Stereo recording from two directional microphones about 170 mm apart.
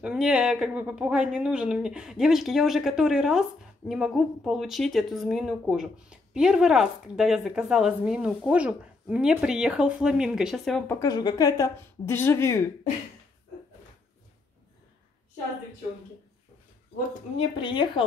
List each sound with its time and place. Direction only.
0.0 s speech: 5° right (ahead or behind)
10.9 s speech: 20° left (ahead or behind)
17.4 s speech: 30° left (ahead or behind)